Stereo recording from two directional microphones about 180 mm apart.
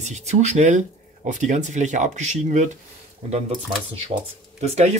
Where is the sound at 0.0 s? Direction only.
40° right (ahead or behind).